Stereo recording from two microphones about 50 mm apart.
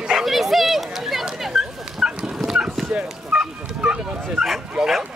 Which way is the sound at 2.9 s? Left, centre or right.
Right.